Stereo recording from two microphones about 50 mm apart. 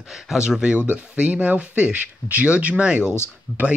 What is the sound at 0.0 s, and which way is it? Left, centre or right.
Speech, centre.